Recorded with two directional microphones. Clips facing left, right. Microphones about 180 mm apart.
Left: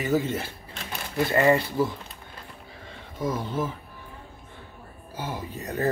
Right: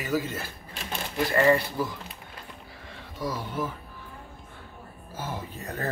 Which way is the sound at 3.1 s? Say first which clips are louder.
Left 3 dB; 20° left (ahead or behind).